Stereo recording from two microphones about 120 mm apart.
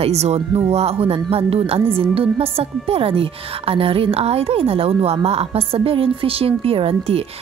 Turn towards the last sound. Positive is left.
turn(degrees=-55)  # may be behind; listen again after turning